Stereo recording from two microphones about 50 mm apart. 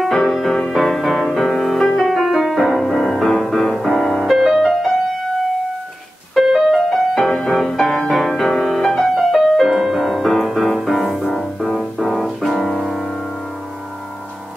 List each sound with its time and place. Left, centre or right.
0.0 s music: centre
6.7 s music: centre